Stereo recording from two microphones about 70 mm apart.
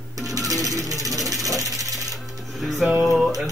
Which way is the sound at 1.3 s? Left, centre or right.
Right.